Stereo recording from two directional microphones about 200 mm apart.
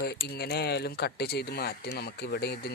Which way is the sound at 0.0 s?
50° left (ahead or behind).